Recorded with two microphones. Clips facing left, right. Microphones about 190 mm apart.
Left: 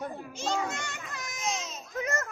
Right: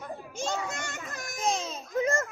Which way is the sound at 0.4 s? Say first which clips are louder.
Left 1 dB; 45° right (ahead or behind).